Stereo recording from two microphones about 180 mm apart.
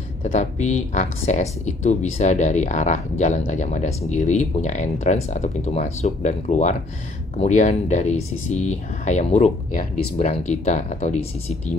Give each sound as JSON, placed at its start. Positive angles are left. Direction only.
{"t": 0.2, "sound": "speech", "side_deg": 40}